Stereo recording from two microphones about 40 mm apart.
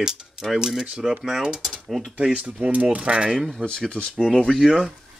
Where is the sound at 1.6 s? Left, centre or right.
Centre.